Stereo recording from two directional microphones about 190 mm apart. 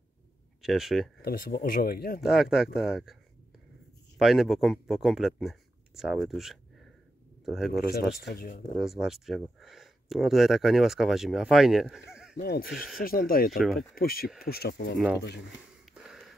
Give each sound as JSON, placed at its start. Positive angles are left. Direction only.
{"t": 0.6, "sound": "speech", "side_deg": 0}
{"t": 1.2, "sound": "speech", "side_deg": 50}
{"t": 2.2, "sound": "speech", "side_deg": 0}
{"t": 4.2, "sound": "speech", "side_deg": 0}
{"t": 7.9, "sound": "speech", "side_deg": 55}
{"t": 8.7, "sound": "speech", "side_deg": 0}
{"t": 12.4, "sound": "speech", "side_deg": 55}
{"t": 12.6, "sound": "speech", "side_deg": -5}
{"t": 13.0, "sound": "speech", "side_deg": 50}
{"t": 13.6, "sound": "speech", "side_deg": 0}
{"t": 13.9, "sound": "speech", "side_deg": 50}
{"t": 15.8, "sound": "a sound", "side_deg": -5}